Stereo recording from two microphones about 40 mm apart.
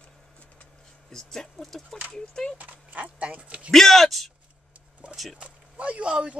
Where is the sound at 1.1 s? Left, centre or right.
Centre.